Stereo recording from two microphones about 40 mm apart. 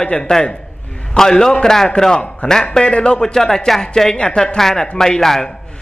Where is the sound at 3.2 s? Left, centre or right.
Centre.